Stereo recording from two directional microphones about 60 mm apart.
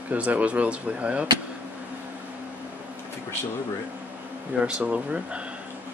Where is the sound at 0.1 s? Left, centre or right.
Right.